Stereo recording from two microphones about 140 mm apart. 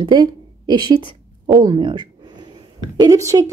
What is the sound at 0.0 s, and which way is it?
A woman's voice, 35° right (ahead or behind).